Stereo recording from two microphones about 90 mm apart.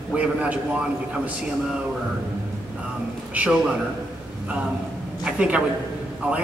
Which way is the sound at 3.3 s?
15° right (ahead or behind).